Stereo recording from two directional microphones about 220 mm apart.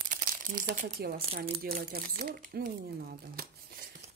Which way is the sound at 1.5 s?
45° right (ahead or behind).